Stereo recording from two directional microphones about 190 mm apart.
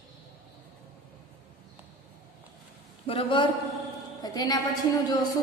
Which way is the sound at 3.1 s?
30° left (ahead or behind).